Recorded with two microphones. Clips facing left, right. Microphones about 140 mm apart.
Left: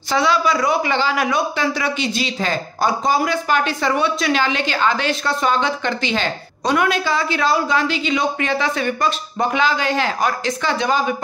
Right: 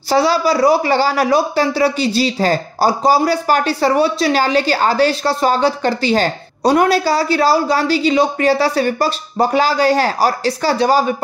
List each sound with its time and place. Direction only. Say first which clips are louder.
0.1 s a man's voice: right 4 dB; 35° right (ahead or behind)